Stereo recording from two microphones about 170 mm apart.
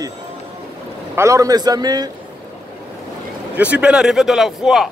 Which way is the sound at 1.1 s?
15° right (ahead or behind).